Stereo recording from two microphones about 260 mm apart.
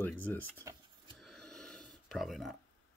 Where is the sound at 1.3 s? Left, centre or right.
Centre.